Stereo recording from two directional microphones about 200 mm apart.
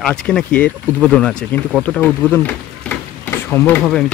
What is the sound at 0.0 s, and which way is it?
Speech, 5° left (ahead or behind).